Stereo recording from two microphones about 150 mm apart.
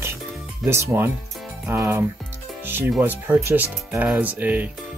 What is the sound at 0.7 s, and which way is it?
Speech, 15° right (ahead or behind).